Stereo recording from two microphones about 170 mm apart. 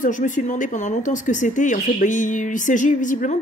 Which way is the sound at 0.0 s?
50° left (ahead or behind).